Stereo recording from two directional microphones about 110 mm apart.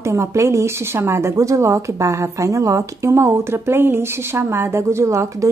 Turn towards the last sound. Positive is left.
turn(degrees=-25)  # may be behind; listen again after turning